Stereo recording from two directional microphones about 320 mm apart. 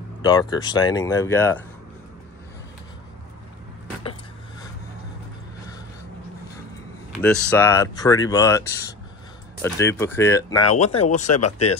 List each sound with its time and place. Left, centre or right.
0.2 s speech: centre
7.1 s speech: centre
10.8 s speech: centre
11.3 s speech: left